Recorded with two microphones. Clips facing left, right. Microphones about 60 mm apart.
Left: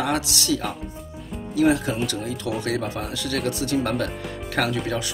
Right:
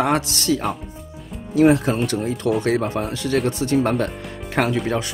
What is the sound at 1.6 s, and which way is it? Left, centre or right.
Speech, right.